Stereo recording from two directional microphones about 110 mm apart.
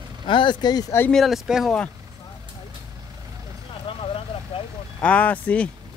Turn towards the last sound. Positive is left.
turn(degrees=15)  # may be behind; listen again after turning